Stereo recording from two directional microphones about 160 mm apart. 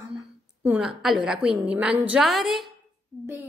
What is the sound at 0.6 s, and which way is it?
A child's voice, 5° right (ahead or behind).